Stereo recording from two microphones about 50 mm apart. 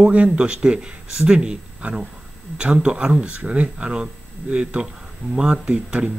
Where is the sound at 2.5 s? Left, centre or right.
Centre.